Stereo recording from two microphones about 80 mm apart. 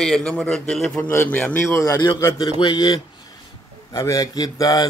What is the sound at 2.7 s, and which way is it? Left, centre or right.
Speech, left.